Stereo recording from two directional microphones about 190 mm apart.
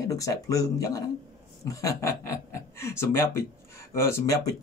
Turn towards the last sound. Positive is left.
turn(degrees=15)  # may be behind; listen again after turning